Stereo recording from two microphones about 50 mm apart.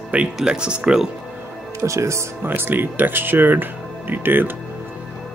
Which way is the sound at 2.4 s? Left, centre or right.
Right.